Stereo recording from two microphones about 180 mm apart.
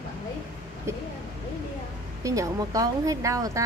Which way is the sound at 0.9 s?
15° right (ahead or behind).